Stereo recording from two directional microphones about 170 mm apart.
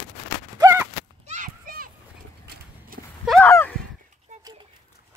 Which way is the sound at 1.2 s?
45° right (ahead or behind).